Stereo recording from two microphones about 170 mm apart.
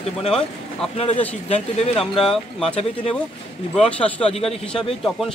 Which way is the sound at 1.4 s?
40° left (ahead or behind).